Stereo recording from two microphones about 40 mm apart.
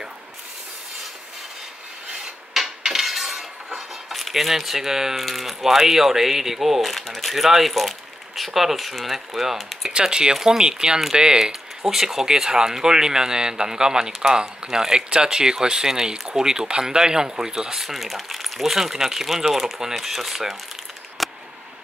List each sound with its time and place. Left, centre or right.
2.5 s cutlery: centre
5.1 s speech: centre
9.8 s speech: centre
10.3 s speech: centre
10.6 s speech: centre
21.2 s a sound: centre